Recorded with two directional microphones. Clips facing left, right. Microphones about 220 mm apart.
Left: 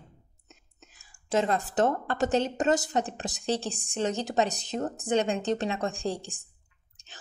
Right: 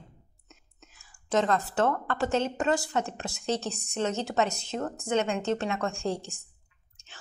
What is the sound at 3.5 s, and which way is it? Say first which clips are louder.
A woman's voice: even; 30° left (ahead or behind).